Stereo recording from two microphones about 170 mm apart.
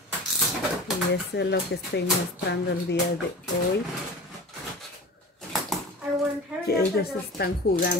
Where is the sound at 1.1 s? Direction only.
85° left.